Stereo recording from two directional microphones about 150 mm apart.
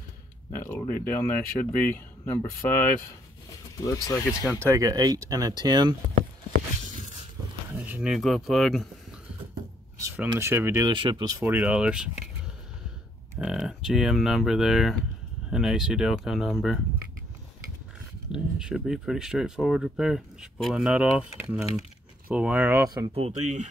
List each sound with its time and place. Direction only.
0.7 s speech: 15° left (ahead or behind)
3.8 s speech: 20° left (ahead or behind)
4.5 s speech: 15° right (ahead or behind)
7.7 s speech: 10° right (ahead or behind)
9.9 s speech: 15° right (ahead or behind)
10.9 s speech: 30° right (ahead or behind)
11.4 s speech: 10° right (ahead or behind)
13.4 s speech: 5° right (ahead or behind)
18.3 s speech: 5° right (ahead or behind); by 23.1 s 25° right (ahead or behind)
23.1 s speech: 45° right (ahead or behind)